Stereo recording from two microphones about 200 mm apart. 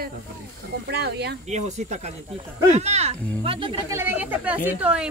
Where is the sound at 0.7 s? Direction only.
55° right (ahead or behind).